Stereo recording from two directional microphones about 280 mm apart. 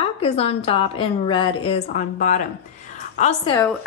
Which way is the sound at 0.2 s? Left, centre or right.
Left.